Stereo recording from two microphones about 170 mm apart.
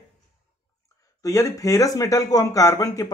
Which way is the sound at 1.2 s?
20° left (ahead or behind).